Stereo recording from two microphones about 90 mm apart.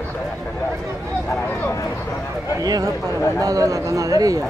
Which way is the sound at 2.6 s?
45° right (ahead or behind).